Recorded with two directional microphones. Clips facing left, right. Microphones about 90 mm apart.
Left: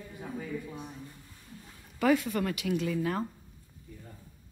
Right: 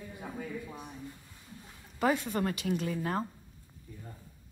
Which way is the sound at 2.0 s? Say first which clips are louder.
Left 3 dB; 30° right (ahead or behind).